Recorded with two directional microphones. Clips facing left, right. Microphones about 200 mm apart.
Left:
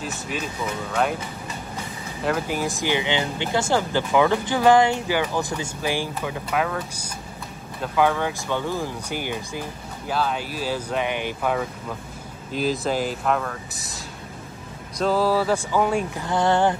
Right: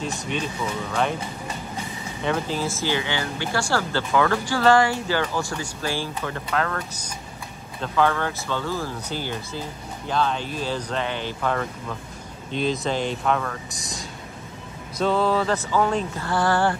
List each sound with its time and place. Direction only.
2.2 s speech: 10° left (ahead or behind)